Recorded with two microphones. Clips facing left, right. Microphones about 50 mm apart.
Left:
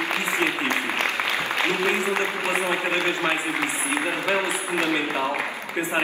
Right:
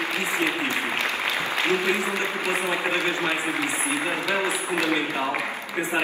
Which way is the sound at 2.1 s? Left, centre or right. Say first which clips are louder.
Left 2 dB; left.